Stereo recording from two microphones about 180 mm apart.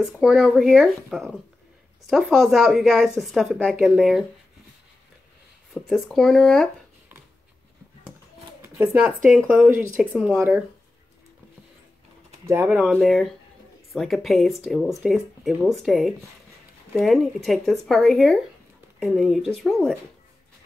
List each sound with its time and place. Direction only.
0.0 s a woman's voice: 5° right (ahead or behind)
5.9 s a woman's voice: centre (ahead or behind)
8.8 s a woman's voice: 5° right (ahead or behind)
12.4 s a woman's voice: 10° right (ahead or behind)